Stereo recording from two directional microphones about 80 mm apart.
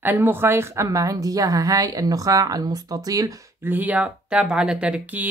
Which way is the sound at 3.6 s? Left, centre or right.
Right.